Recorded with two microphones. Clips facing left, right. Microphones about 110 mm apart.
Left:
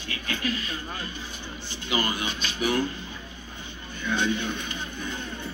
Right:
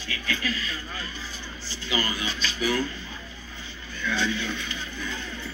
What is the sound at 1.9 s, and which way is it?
Speech, 55° left (ahead or behind).